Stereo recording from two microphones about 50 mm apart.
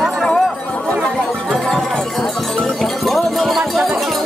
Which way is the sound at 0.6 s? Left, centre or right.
Left.